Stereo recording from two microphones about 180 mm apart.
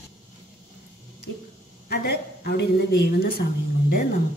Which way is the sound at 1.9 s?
60° left (ahead or behind).